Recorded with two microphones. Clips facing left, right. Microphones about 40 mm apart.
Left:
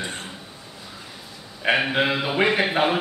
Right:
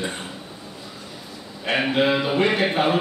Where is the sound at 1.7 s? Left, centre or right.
Centre.